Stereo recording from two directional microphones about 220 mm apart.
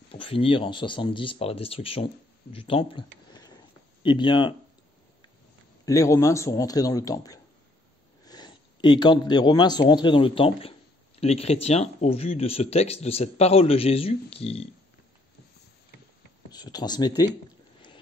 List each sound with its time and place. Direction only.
0.1 s speech: 25° left (ahead or behind)
5.9 s a man's voice: 15° left (ahead or behind)
16.4 s a man's voice: 20° left (ahead or behind)